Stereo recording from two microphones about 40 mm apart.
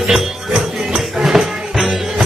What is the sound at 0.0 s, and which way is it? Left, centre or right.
Music, right.